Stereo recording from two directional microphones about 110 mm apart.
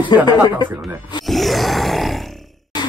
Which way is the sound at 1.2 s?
Centre (ahead or behind).